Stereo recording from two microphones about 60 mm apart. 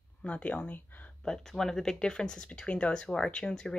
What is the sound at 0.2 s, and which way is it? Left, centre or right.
Speech, left.